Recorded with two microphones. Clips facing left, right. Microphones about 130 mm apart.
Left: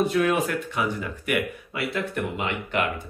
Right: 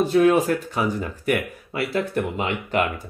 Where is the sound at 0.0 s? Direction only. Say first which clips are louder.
Right 5 dB; 30° right (ahead or behind).